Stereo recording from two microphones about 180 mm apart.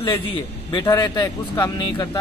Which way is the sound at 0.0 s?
25° left (ahead or behind).